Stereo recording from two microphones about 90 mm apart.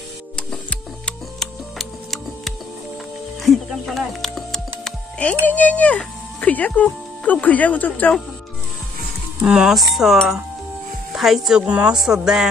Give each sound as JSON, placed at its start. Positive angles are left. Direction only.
{"t": 0.4, "sound": "music", "side_deg": 10}
{"t": 5.4, "sound": "speech", "side_deg": 15}
{"t": 9.4, "sound": "speech", "side_deg": -10}